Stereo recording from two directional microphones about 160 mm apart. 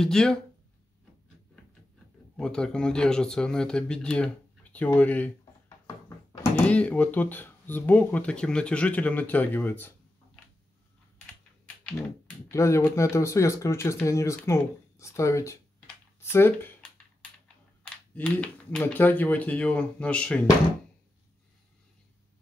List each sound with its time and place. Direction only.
0.0 s speech: 5° left (ahead or behind)
2.3 s speech: 5° left (ahead or behind)
6.6 s speech: 10° left (ahead or behind)
12.4 s speech: 20° left (ahead or behind)
17.8 s speech: 5° left (ahead or behind)